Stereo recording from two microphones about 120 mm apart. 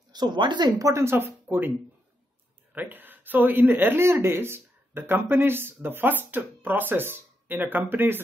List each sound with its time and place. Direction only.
0.1 s speech: 35° right (ahead or behind); by 1.7 s 15° right (ahead or behind)
2.7 s speech: 15° right (ahead or behind)